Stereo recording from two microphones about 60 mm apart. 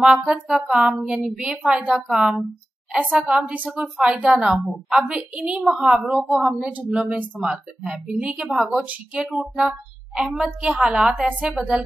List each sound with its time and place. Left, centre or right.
0.0 s a woman's voice: centre
6.9 s a woman's voice: centre